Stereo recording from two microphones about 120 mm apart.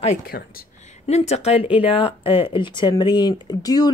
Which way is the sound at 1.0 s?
65° left (ahead or behind).